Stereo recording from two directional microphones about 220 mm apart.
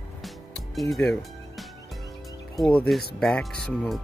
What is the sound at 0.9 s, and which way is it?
Music, centre (ahead or behind).